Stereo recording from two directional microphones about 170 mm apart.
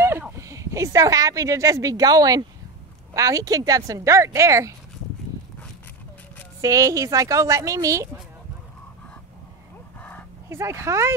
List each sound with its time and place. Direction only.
0.0 s speech: 15° right (ahead or behind)
6.6 s speech: 20° right (ahead or behind)
9.9 s a sound: 10° left (ahead or behind)
10.5 s speech: 15° right (ahead or behind)